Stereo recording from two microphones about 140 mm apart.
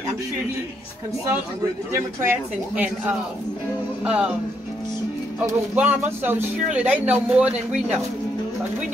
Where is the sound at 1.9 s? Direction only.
15° right (ahead or behind).